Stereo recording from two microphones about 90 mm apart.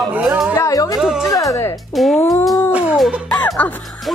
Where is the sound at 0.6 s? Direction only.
40° left (ahead or behind).